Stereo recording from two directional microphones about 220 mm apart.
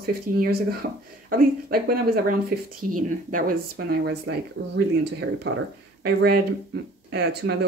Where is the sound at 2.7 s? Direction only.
90° right.